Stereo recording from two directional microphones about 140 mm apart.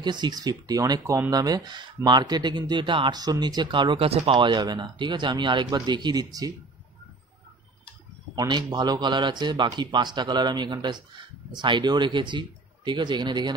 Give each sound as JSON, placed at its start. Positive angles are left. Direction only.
{"t": 0.0, "sound": "a man's voice", "side_deg": -30}
{"t": 8.4, "sound": "a man's voice", "side_deg": -30}